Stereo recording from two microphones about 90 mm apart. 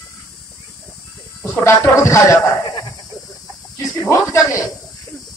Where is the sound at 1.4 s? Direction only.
30° left (ahead or behind).